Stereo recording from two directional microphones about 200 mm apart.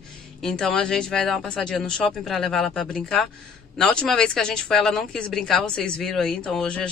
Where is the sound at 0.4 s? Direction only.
Centre (ahead or behind).